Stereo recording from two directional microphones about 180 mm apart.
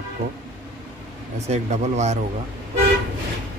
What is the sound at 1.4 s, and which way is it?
Speech, 40° right (ahead or behind).